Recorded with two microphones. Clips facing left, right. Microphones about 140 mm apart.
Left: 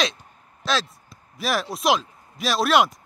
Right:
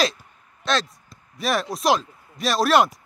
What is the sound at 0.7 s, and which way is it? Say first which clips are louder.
Speech: right 1 dB; centre (ahead or behind).